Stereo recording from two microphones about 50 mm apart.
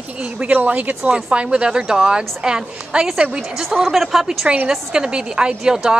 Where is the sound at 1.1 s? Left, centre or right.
Centre.